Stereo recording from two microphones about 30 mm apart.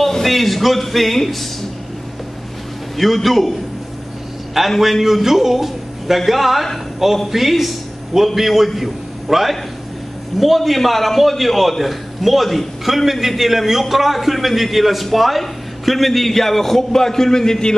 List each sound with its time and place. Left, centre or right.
0.1 s speech: centre
3.0 s a man's voice: centre
4.6 s a man's voice: centre; by 17.7 s left